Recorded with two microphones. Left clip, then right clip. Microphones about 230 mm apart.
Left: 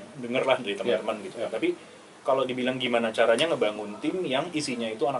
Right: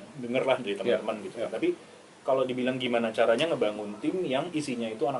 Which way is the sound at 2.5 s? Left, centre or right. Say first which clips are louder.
Left 2 dB; centre.